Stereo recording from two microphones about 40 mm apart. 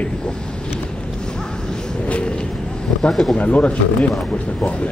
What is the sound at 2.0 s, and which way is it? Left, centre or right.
Vehicle, left.